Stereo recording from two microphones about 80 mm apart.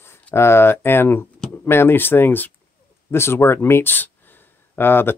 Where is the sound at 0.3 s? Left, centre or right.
Left.